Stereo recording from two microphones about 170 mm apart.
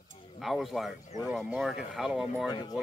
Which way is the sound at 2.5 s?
25° left (ahead or behind).